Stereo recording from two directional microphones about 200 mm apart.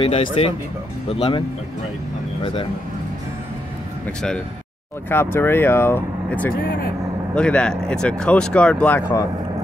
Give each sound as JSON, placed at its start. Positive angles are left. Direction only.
{"t": 0.0, "sound": "speech", "side_deg": 25}
{"t": 5.1, "sound": "speech", "side_deg": 10}
{"t": 6.5, "sound": "speech", "side_deg": 45}
{"t": 7.3, "sound": "speech", "side_deg": 5}